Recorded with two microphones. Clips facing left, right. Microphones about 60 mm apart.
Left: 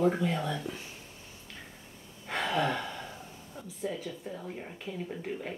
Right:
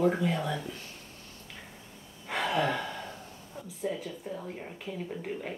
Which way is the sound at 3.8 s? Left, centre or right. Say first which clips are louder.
Right 2 dB; centre.